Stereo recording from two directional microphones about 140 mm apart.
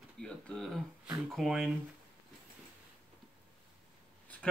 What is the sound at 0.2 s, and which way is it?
Speech, 5° left (ahead or behind).